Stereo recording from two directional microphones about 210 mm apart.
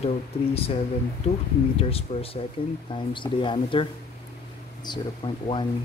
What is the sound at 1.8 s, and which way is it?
Speech, 30° left (ahead or behind).